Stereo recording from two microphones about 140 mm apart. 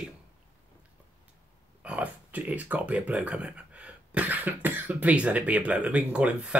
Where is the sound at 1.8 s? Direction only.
10° right (ahead or behind).